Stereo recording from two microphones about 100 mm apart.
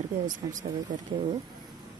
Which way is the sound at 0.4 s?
45° right (ahead or behind).